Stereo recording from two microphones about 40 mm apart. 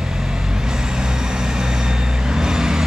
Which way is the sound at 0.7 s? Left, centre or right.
Centre.